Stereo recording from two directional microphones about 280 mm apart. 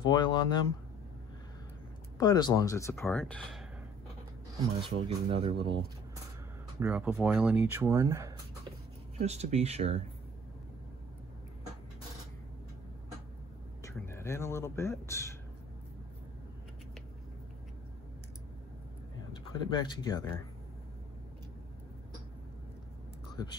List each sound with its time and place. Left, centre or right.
0.0 s speech: centre
2.1 s speech: centre
4.8 s speech: centre
6.8 s speech: centre
9.2 s speech: right
13.8 s speech: centre
19.5 s speech: centre